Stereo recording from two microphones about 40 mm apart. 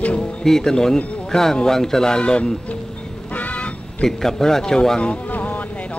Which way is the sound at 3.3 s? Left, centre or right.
Left.